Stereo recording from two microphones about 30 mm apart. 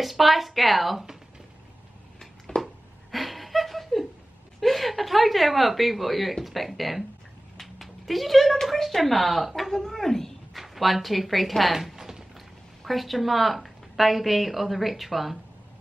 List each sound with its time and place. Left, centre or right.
0.0 s speech: centre
2.6 s a sound: centre
4.6 s speech: centre
7.5 s cat: centre
8.7 s speech: centre
10.5 s a woman's voice: centre
11.7 s a sound: centre
12.8 s speech: centre